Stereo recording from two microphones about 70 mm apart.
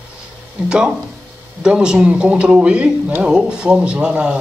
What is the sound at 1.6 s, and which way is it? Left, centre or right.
Speech, centre.